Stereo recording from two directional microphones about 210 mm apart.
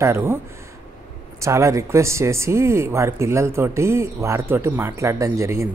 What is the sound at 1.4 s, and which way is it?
Speech, 15° right (ahead or behind).